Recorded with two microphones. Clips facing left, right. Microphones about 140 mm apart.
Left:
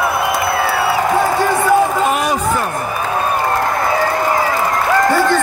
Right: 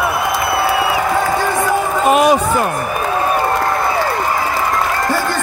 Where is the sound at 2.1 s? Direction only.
20° right (ahead or behind).